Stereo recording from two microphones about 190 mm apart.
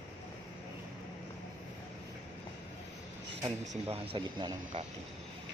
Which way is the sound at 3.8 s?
30° right (ahead or behind).